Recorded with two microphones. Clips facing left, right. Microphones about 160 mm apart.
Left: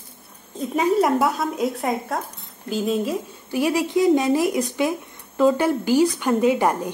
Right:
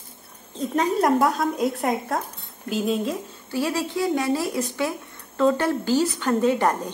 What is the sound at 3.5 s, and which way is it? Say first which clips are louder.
A woman's voice: left 4 dB; 15° left (ahead or behind).